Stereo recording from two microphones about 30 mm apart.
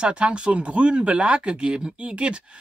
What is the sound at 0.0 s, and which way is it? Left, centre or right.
Speech, right.